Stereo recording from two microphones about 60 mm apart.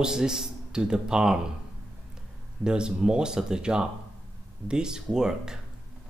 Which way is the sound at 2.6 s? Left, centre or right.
Centre.